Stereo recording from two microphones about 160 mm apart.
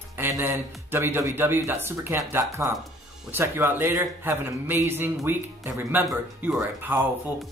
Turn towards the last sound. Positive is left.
turn(degrees=-10)  # may be behind; listen again after turning